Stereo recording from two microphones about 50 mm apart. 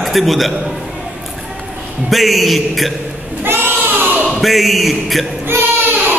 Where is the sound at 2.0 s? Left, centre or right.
Centre.